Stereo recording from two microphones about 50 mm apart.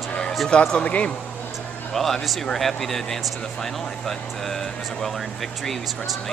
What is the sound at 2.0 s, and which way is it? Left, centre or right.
Speech, centre.